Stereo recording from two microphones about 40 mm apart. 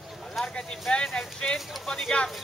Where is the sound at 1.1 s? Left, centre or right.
Centre.